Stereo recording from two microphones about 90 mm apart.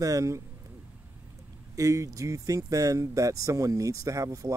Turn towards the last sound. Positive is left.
turn(degrees=-40)  # may be behind; listen again after turning